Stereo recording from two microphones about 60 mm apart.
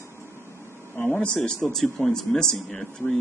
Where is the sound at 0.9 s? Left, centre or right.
Left.